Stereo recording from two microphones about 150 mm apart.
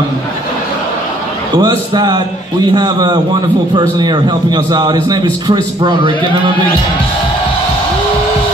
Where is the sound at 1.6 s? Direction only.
30° right (ahead or behind).